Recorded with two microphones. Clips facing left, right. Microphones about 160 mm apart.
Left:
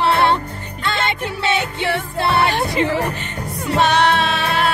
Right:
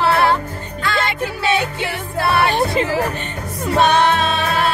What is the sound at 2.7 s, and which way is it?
Speech, 25° left (ahead or behind).